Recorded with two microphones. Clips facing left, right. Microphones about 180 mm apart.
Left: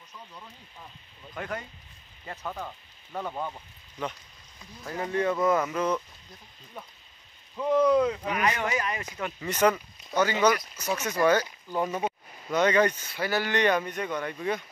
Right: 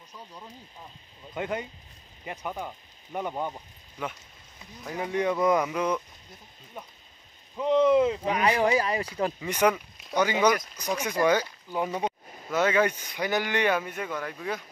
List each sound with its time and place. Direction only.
1.3 s speech: 20° right (ahead or behind)
7.5 s speech: 20° right (ahead or behind)
8.5 s speech: 35° right (ahead or behind)
9.4 s speech: 10° right (ahead or behind)